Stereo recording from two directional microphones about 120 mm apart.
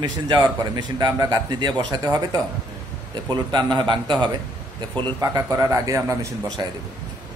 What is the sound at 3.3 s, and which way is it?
A man's voice, 40° right (ahead or behind).